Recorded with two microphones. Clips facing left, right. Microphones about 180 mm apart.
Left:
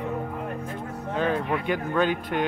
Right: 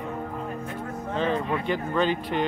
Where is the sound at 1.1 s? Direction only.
5° left (ahead or behind).